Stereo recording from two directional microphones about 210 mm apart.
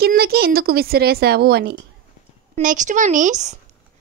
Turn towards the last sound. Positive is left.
turn(degrees=-35)  # may be behind; listen again after turning